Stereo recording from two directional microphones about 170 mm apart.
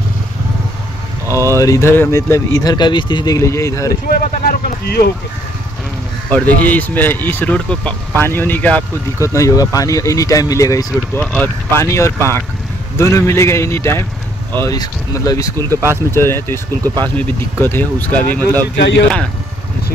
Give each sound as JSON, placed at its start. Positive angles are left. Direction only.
{"t": 1.2, "sound": "a sound", "side_deg": -15}
{"t": 1.6, "sound": "speech", "side_deg": 15}
{"t": 4.2, "sound": "speech", "side_deg": 55}
{"t": 6.3, "sound": "speech", "side_deg": 10}
{"t": 18.8, "sound": "speech", "side_deg": 90}